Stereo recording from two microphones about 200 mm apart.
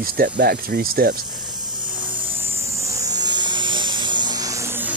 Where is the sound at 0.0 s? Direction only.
50° right (ahead or behind).